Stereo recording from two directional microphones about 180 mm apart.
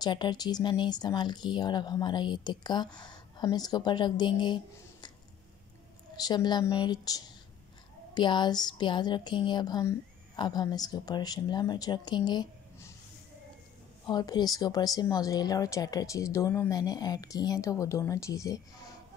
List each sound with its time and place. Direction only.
0.0 s a woman's voice: 25° left (ahead or behind)
6.1 s a woman's voice: 20° left (ahead or behind)
12.3 s a sound: 20° left (ahead or behind)
14.0 s a woman's voice: 25° left (ahead or behind)